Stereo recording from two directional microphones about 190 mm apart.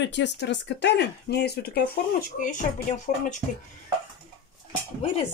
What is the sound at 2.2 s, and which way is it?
Speech, 45° left (ahead or behind).